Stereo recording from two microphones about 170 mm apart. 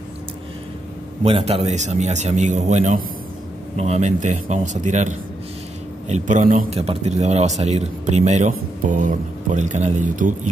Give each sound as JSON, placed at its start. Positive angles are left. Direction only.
{"t": 1.2, "sound": "a man's voice", "side_deg": -35}
{"t": 6.7, "sound": "speech", "side_deg": -40}